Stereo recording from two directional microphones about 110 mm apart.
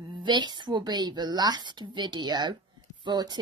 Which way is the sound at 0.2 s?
45° right (ahead or behind).